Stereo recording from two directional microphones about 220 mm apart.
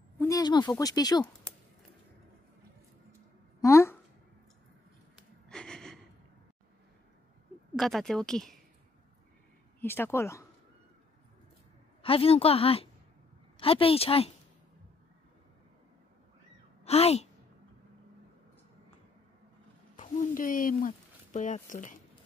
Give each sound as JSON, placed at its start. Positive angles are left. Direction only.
{"t": 0.2, "sound": "speech", "side_deg": 15}
{"t": 3.6, "sound": "a sound", "side_deg": 10}
{"t": 5.5, "sound": "gasp", "side_deg": 5}
{"t": 7.7, "sound": "a woman's voice", "side_deg": 0}
{"t": 9.8, "sound": "speech", "side_deg": 10}
{"t": 12.0, "sound": "a woman's voice", "side_deg": 25}
{"t": 16.8, "sound": "a woman's voice", "side_deg": 30}
{"t": 20.0, "sound": "speech", "side_deg": 35}